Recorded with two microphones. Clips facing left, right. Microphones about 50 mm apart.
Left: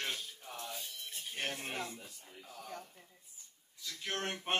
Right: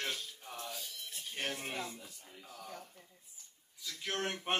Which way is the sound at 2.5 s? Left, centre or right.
Centre.